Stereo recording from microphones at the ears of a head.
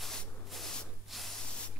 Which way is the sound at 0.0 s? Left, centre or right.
Centre.